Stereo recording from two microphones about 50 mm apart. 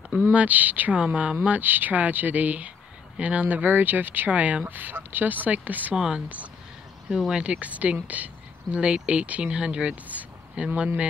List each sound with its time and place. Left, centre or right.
0.1 s speech: right
0.9 s speech: centre
1.6 s speech: right
5.9 s speech: centre
6.2 s speech: right
7.1 s speech: centre
7.3 s speech: right